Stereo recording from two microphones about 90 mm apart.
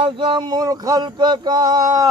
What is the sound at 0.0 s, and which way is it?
Speech, 65° right (ahead or behind).